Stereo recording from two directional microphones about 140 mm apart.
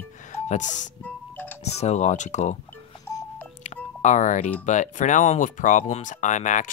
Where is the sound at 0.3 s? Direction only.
60° left (ahead or behind).